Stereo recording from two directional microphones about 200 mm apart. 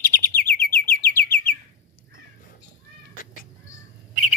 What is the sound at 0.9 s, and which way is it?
Chirp, 50° left (ahead or behind).